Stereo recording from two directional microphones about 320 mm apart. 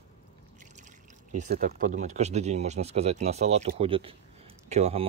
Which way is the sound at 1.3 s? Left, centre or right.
Right.